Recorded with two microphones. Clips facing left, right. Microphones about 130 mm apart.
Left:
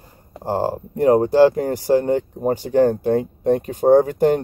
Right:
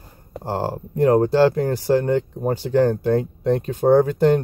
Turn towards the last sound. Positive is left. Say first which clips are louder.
# left 1 dB
turn(degrees=15)  # may be behind; listen again after turning